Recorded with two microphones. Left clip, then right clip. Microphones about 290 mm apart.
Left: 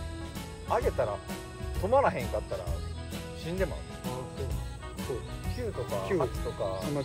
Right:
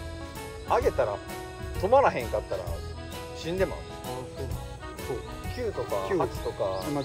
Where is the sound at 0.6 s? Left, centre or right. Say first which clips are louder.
Right 4 dB; right.